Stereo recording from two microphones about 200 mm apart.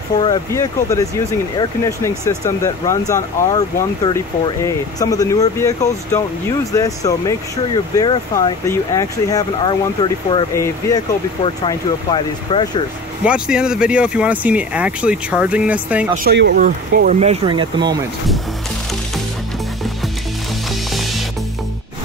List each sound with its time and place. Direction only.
0.2 s speech: 15° left (ahead or behind)
13.2 s speech: 5° right (ahead or behind)
16.3 s speech: 60° right (ahead or behind)
16.5 s speech: 45° right (ahead or behind); by 17.9 s 25° right (ahead or behind)
20.9 s mechanisms: centre (ahead or behind)